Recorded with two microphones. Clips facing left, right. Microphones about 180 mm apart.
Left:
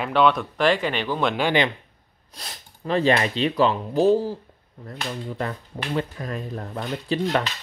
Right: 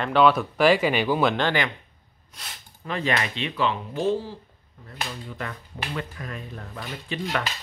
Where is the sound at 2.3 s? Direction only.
35° left (ahead or behind).